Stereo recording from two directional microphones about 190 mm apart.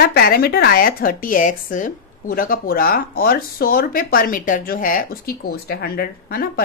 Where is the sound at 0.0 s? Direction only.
55° left (ahead or behind).